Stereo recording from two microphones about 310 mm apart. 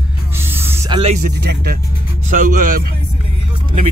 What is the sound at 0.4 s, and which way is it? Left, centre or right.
Music, centre.